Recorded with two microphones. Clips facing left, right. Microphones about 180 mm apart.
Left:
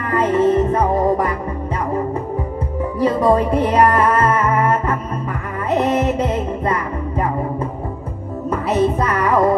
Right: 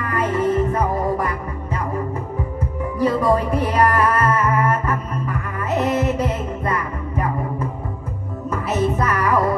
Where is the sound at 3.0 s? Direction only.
25° left (ahead or behind).